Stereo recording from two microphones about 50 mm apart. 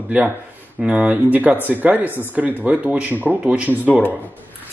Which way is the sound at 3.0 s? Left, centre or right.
Right.